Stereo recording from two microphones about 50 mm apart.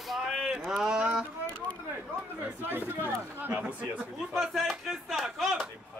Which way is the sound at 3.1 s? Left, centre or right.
Right.